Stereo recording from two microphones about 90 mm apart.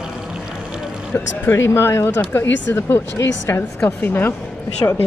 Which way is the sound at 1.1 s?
25° left (ahead or behind).